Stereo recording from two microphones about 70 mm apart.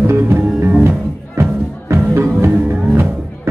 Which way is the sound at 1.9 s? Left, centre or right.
Right.